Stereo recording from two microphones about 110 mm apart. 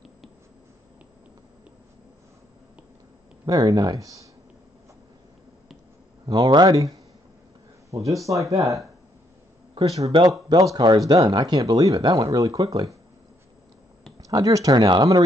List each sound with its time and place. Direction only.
3.4 s speech: 35° right (ahead or behind)
6.2 s speech: 40° right (ahead or behind)
7.9 s speech: 30° right (ahead or behind)
9.8 s speech: 70° right (ahead or behind)
10.5 s speech: 35° right (ahead or behind)
14.3 s speech: 30° right (ahead or behind)